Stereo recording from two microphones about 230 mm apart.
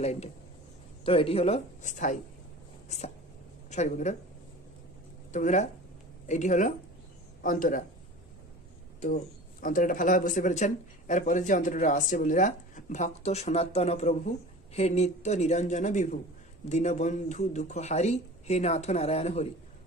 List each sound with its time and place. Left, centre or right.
0.0 s speech: left
3.7 s speech: left
5.3 s speech: left
9.1 s speech: left